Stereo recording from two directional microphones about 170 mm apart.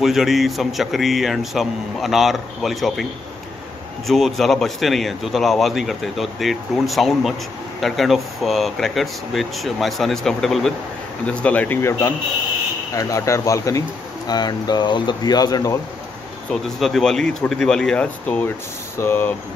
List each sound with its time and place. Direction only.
0.0 s a man's voice: centre (ahead or behind)
4.1 s a man's voice: centre (ahead or behind); by 15.8 s 20° left (ahead or behind)
16.6 s a man's voice: centre (ahead or behind)